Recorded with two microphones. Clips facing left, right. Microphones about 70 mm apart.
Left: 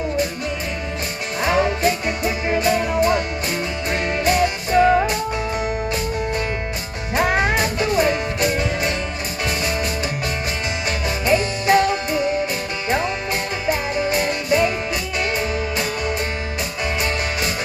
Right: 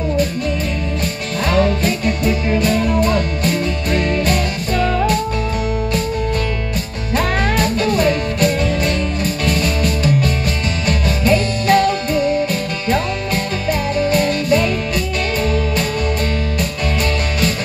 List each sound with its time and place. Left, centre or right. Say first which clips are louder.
1.4 s music: right 2 dB; centre
7.2 s music: right 1 dB; centre